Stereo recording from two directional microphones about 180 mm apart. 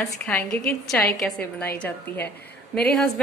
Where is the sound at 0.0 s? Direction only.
5° left (ahead or behind).